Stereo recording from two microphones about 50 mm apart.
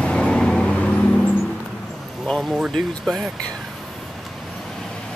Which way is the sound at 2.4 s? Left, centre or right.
Centre.